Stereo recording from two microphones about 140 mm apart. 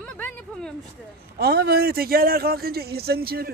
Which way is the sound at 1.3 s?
90° right.